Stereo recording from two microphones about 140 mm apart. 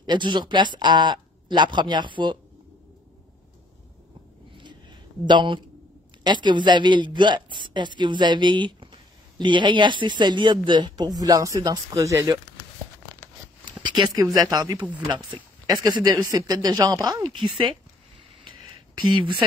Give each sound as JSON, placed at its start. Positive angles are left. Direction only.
{"t": 0.0, "sound": "speech", "side_deg": -35}
{"t": 4.6, "sound": "a sound", "side_deg": -35}
{"t": 6.2, "sound": "speech", "side_deg": -30}
{"t": 13.7, "sound": "speech", "side_deg": -35}
{"t": 18.9, "sound": "speech", "side_deg": -35}